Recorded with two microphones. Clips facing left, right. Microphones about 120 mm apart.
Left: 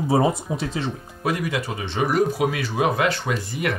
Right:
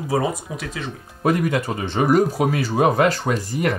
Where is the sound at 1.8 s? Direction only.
45° right (ahead or behind).